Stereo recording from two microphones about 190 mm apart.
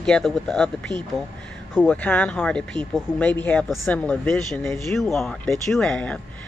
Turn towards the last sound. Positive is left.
turn(degrees=5)  # may be behind; listen again after turning